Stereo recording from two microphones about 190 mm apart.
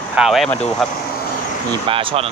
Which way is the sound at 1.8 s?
30° right (ahead or behind).